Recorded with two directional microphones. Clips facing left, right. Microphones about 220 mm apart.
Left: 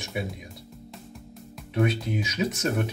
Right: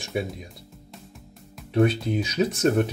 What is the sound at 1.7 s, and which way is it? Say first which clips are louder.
Speech: right 4 dB; 30° right (ahead or behind).